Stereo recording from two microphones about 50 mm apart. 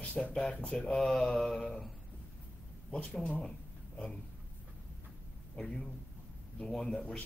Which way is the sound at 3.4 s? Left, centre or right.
Centre.